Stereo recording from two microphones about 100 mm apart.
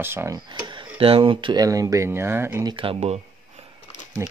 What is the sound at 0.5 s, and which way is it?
Speech, 50° right (ahead or behind).